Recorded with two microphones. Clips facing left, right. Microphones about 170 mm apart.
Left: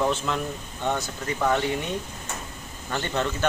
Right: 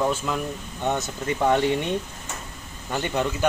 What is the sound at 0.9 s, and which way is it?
Speech, 20° right (ahead or behind).